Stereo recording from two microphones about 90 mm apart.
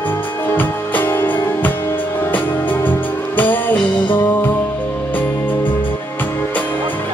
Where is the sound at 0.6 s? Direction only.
20° left (ahead or behind).